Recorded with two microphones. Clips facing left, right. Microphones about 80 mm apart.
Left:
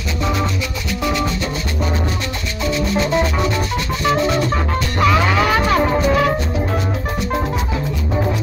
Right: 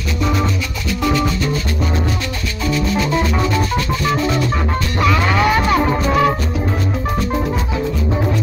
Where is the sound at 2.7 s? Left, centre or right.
Left.